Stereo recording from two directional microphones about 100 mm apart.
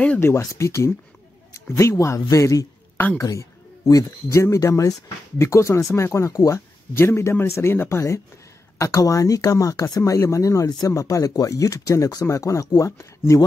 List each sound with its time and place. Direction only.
0.0 s speech: 15° left (ahead or behind)
0.4 s speech: 30° left (ahead or behind)
8.7 s speech: 35° left (ahead or behind)